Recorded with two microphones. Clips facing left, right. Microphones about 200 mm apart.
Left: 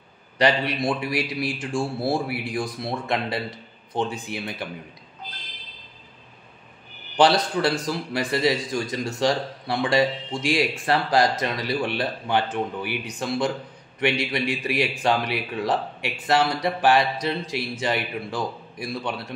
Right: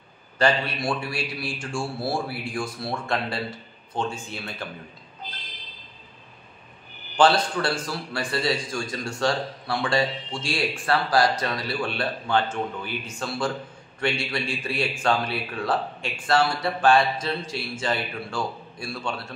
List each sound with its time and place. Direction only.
0.4 s a man's voice: 15° left (ahead or behind)
7.2 s speech: 20° left (ahead or behind)